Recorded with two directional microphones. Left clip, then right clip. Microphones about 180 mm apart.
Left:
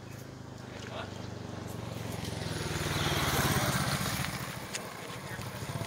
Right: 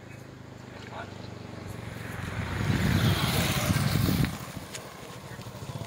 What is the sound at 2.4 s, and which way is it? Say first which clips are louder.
Vehicle: right 5 dB; 35° right (ahead or behind).